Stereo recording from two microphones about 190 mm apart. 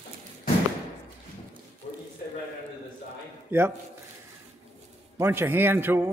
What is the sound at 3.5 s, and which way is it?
Speech, 10° right (ahead or behind).